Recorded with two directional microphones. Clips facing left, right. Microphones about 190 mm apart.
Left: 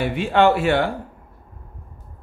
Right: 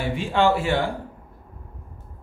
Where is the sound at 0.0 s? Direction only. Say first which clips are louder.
Left 4 dB; 65° left (ahead or behind).